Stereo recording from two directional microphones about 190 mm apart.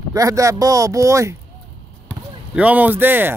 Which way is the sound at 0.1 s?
15° right (ahead or behind).